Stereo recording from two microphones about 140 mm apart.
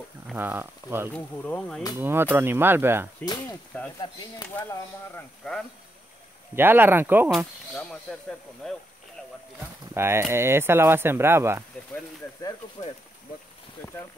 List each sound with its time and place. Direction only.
0.3 s speech: 15° right (ahead or behind)
1.1 s speech: 10° left (ahead or behind)
2.0 s speech: 15° right (ahead or behind)
3.7 s speech: 10° left (ahead or behind)
6.5 s speech: 15° right (ahead or behind)
7.2 s speech: 5° left (ahead or behind)
9.9 s speech: 15° right (ahead or behind)